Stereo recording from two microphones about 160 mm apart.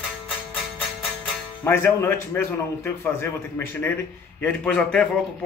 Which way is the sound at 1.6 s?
15° left (ahead or behind).